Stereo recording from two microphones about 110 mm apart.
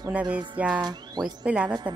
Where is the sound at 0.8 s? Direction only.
40° right (ahead or behind).